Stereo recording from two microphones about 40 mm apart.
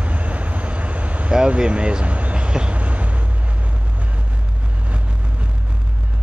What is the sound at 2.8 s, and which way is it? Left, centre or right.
Vehicle, right.